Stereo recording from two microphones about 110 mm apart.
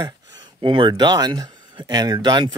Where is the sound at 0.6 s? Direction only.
50° right (ahead or behind).